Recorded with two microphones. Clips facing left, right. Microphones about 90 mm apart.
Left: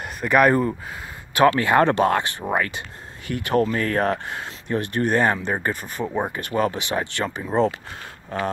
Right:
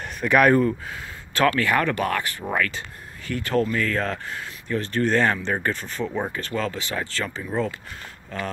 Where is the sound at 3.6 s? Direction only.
45° left (ahead or behind).